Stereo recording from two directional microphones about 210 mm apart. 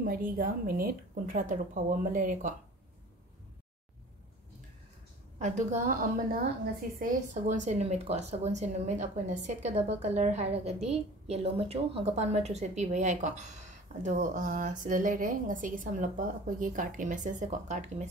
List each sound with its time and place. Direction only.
0.0 s speech: 40° right (ahead or behind)
5.4 s speech: 35° right (ahead or behind)